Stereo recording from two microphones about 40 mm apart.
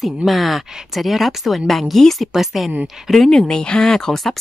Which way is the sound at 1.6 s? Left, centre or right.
Centre.